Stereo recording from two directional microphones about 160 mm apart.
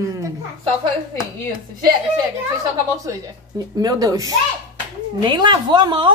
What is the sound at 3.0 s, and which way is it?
A woman's voice, 20° right (ahead or behind).